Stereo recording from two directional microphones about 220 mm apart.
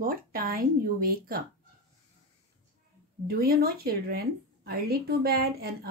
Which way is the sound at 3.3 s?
45° right (ahead or behind).